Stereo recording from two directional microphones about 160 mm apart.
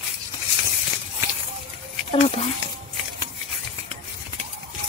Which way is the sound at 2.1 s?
40° left (ahead or behind).